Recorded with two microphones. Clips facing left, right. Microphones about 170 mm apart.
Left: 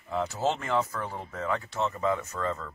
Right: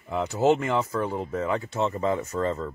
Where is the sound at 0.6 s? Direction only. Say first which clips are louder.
Right 4 dB; 25° right (ahead or behind).